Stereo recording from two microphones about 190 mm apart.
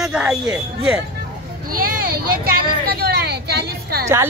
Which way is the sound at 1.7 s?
50° right (ahead or behind).